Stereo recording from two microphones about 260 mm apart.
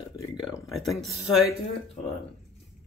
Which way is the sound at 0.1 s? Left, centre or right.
Centre.